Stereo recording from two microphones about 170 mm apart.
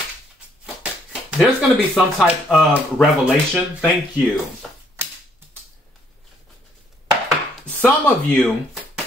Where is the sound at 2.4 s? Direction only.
5° left (ahead or behind).